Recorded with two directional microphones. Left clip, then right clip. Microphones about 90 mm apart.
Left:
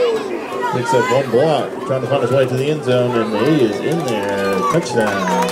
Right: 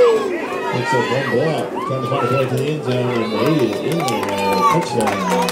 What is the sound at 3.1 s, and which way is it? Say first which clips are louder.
Speech: left 2 dB; 25° right (ahead or behind).